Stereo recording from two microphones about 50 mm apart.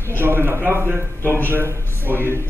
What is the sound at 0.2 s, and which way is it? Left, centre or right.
A man's voice, right.